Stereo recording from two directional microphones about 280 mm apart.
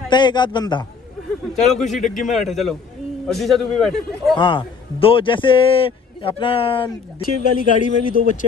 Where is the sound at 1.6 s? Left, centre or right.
Centre.